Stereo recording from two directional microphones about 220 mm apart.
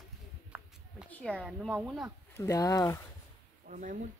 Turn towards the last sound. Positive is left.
turn(degrees=-35)  # may be behind; listen again after turning